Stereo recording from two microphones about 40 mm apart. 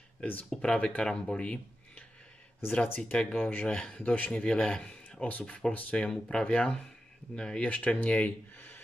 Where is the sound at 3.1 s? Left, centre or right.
Left.